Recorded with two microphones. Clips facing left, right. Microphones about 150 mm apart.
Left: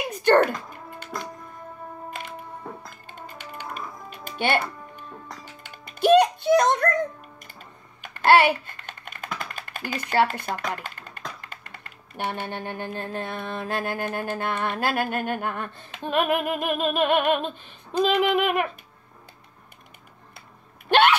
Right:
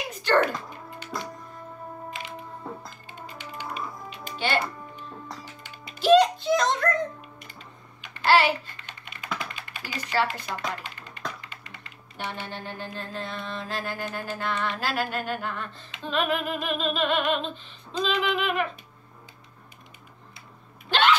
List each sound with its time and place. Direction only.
0.2 s music: 50° left (ahead or behind)
8.0 s typing: 50° left (ahead or behind)
20.9 s hiccup: 60° left (ahead or behind)